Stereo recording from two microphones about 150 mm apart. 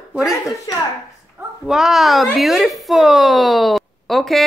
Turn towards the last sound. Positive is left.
turn(degrees=0)  # may be behind; listen again after turning